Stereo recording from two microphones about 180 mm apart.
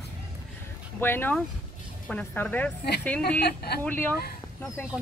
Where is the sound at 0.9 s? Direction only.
10° left (ahead or behind).